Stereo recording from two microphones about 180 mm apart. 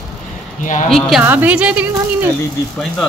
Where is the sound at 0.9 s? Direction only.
Centre (ahead or behind).